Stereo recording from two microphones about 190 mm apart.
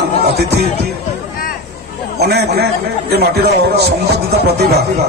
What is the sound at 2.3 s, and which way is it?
A man's voice, 55° right (ahead or behind).